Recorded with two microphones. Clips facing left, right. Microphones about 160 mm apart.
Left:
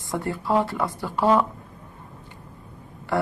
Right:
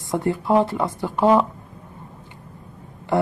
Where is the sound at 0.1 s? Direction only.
20° right (ahead or behind).